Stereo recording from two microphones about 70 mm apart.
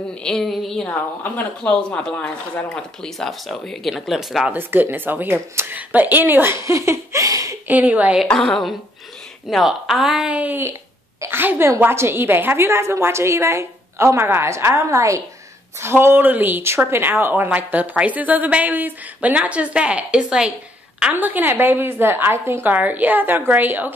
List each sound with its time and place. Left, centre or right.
0.2 s a woman's voice: centre
4.5 s a woman's voice: right
6.6 s speech: right
7.2 s a sound: right
7.6 s a woman's voice: right
8.3 s a woman's voice: centre
10.4 s a woman's voice: right
15.8 s a woman's voice: right; by 20.5 s centre
21.1 s a woman's voice: right